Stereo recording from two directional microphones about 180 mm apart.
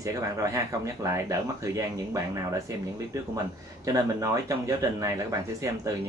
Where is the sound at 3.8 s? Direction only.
20° right (ahead or behind).